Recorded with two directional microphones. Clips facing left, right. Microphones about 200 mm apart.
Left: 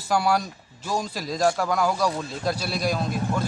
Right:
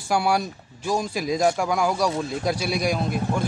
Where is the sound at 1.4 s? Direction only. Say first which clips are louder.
Left 1 dB; 10° right (ahead or behind).